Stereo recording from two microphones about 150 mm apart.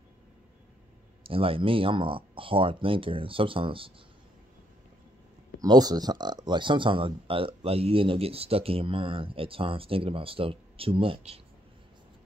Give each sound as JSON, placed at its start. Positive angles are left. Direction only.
{"t": 1.2, "sound": "speech", "side_deg": -35}
{"t": 5.6, "sound": "speech", "side_deg": -25}